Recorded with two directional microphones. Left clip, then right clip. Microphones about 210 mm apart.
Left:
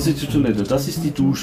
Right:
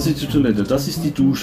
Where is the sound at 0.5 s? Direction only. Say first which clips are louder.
Right 1 dB; centre (ahead or behind).